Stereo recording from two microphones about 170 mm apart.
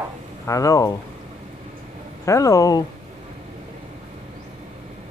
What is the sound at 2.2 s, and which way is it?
Speech, 20° left (ahead or behind).